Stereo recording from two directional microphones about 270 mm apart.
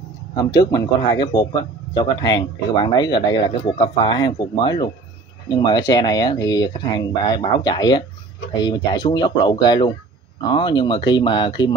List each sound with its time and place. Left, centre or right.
0.3 s speech: centre